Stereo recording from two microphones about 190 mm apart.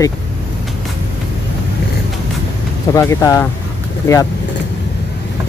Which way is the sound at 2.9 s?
15° left (ahead or behind).